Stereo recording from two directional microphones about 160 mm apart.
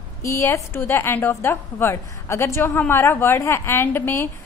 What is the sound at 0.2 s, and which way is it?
A woman's voice, 20° left (ahead or behind).